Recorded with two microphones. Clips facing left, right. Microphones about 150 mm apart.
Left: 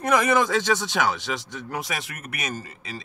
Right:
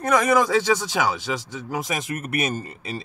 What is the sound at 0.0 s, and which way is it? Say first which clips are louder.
Speech: right 2 dB; 5° left (ahead or behind).